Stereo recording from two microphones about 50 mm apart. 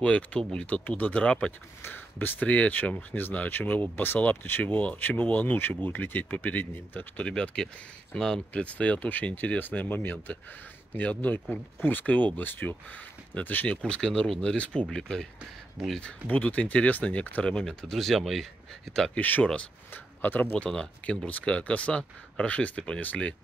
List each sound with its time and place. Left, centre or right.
0.0 s speech: left
1.8 s speech: left
2.4 s speech: left
7.2 s speech: left
9.6 s speech: left
11.0 s speech: left
13.8 s speech: left
16.3 s speech: left
17.9 s speech: centre
19.1 s speech: left
19.4 s speech: left
19.9 s a sound: left
20.5 s speech: centre